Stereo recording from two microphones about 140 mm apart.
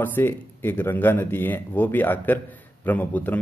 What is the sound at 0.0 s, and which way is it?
Speech, 15° left (ahead or behind).